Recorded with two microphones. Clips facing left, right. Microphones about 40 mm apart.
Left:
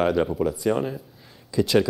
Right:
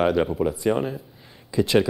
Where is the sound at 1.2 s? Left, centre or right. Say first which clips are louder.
Even; centre.